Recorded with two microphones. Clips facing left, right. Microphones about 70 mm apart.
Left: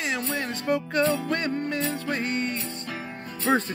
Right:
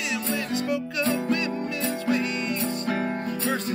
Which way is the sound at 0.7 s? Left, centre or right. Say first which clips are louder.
Left 5 dB; left.